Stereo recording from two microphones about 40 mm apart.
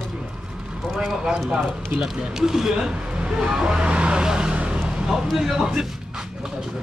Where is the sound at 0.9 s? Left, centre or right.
Centre.